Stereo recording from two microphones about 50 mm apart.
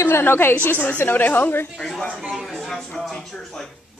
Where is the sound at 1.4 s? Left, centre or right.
Left.